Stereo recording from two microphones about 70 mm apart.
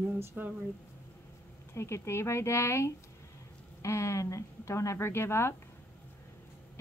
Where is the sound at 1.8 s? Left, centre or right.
Left.